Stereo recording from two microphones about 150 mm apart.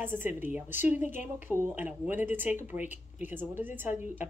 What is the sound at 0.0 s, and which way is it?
Speech, 15° right (ahead or behind).